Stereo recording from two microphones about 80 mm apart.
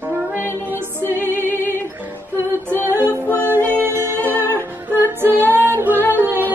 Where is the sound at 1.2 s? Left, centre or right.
Right.